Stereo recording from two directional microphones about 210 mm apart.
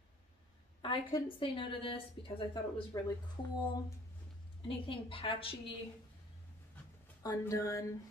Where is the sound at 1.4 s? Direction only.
25° left (ahead or behind).